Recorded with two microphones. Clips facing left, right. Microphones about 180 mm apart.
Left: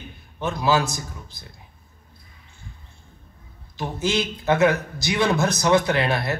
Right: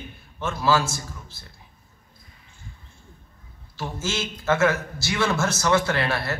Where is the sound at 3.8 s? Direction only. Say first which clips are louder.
Left 5 dB; 15° left (ahead or behind).